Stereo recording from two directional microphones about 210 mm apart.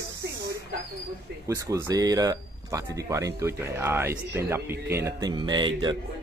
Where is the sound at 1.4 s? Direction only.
15° right (ahead or behind).